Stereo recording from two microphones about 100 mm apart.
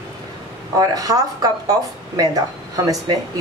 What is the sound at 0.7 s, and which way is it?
A woman's voice, 40° right (ahead or behind).